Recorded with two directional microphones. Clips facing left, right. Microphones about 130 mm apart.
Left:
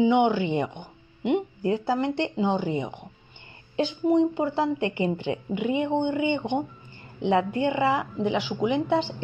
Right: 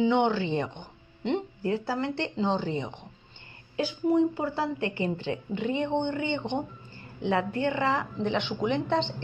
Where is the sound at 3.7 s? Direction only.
20° left (ahead or behind).